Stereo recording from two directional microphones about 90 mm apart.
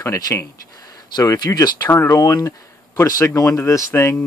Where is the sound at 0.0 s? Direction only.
35° left (ahead or behind).